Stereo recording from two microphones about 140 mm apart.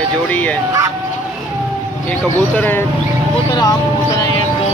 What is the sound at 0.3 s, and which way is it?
Speech, 10° left (ahead or behind).